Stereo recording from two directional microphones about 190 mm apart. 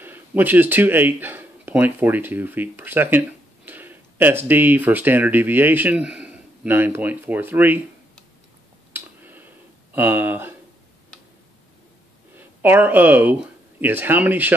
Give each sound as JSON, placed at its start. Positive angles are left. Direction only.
{"t": 0.0, "sound": "speech", "side_deg": -10}
{"t": 8.9, "sound": "a sound", "side_deg": -10}
{"t": 9.9, "sound": "speech", "side_deg": -10}
{"t": 12.4, "sound": "speech", "side_deg": -10}